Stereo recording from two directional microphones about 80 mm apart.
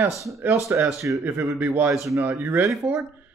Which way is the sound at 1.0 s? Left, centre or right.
Right.